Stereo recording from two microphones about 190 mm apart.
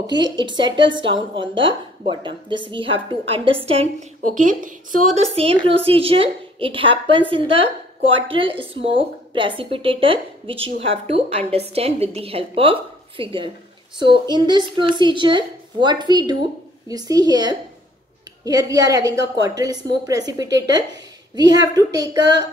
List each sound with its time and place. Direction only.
0.0 s a woman's voice: 20° right (ahead or behind)
4.2 s a woman's voice: 45° right (ahead or behind); by 22.5 s 20° right (ahead or behind)